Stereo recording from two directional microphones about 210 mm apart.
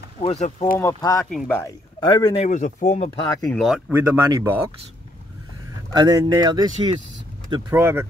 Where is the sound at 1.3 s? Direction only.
5° left (ahead or behind); by 3.1 s 35° left (ahead or behind).